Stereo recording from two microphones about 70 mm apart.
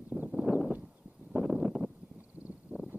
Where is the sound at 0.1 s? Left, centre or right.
Right.